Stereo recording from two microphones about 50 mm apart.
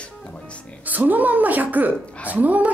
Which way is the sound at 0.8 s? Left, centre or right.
Right.